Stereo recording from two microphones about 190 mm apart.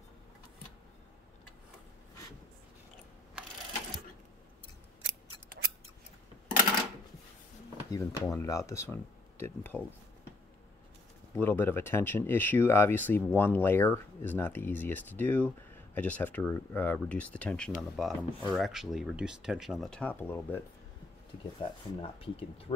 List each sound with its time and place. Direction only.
3.4 s sewing machine: 5° right (ahead or behind)
7.9 s speech: 15° left (ahead or behind)
11.3 s speech: 10° left (ahead or behind)
21.5 s speech: 30° left (ahead or behind)